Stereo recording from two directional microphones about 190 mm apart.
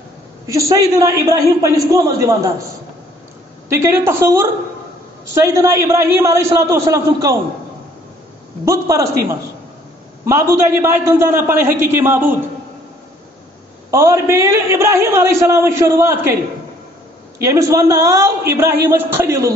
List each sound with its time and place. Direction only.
0.5 s a man's voice: 15° right (ahead or behind)
3.6 s a man's voice: 15° right (ahead or behind)
8.6 s a man's voice: 15° right (ahead or behind)
10.2 s a man's voice: 15° right (ahead or behind)
13.8 s a man's voice: 15° right (ahead or behind)
17.4 s a man's voice: 15° right (ahead or behind)